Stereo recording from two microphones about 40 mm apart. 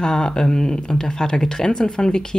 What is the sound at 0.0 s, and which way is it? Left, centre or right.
Speech, centre.